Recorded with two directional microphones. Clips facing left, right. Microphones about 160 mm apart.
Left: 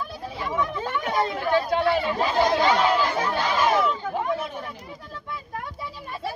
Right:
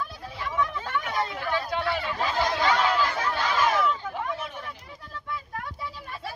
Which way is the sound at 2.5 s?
25° left (ahead or behind).